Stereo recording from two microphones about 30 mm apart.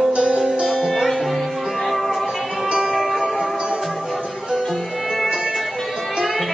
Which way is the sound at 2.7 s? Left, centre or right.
Centre.